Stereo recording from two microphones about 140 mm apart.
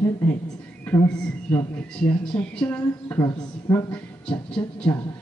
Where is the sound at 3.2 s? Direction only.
20° left (ahead or behind).